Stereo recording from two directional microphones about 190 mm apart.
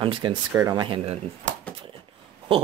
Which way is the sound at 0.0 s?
25° right (ahead or behind).